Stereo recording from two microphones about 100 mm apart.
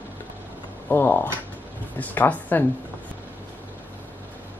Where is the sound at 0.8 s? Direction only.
20° left (ahead or behind).